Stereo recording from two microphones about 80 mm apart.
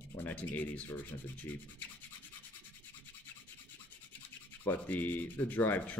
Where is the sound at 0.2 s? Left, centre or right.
Left.